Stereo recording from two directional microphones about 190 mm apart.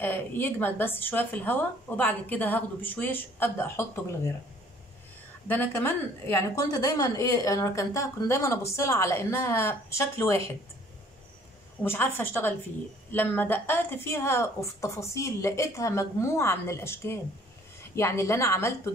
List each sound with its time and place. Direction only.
0.0 s speech: 10° left (ahead or behind)
5.5 s speech: 10° left (ahead or behind)
11.8 s speech: 10° left (ahead or behind)